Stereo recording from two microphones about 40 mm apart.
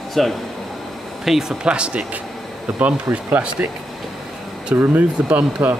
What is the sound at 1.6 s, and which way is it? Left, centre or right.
Speech, right.